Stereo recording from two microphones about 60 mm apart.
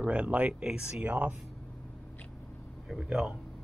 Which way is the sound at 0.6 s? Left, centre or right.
Centre.